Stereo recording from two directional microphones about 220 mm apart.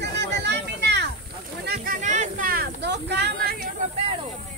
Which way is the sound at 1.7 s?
40° right (ahead or behind).